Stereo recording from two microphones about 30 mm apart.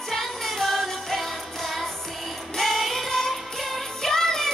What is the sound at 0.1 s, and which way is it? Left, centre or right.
Music, centre.